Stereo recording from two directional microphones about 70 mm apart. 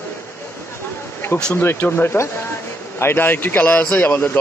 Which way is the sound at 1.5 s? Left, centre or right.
Left.